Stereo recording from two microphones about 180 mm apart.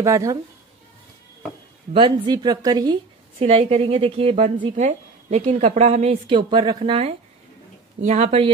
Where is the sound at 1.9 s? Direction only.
25° right (ahead or behind).